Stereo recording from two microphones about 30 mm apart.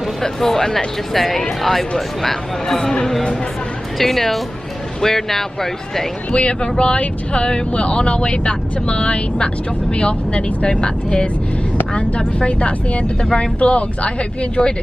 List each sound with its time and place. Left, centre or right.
0.2 s speech: centre
4.0 s speech: centre
6.3 s speech: left